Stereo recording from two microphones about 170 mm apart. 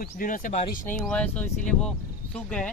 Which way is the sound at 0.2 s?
50° left (ahead or behind).